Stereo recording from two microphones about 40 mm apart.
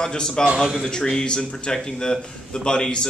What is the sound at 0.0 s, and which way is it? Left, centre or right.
Speech, centre.